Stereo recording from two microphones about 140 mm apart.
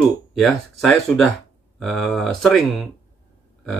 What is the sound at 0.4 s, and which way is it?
Speech, centre (ahead or behind).